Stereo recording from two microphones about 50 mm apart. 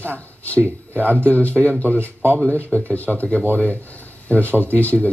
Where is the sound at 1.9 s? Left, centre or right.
Right.